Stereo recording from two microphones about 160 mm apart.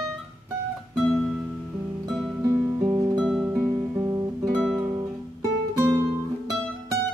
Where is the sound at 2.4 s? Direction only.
20° right (ahead or behind).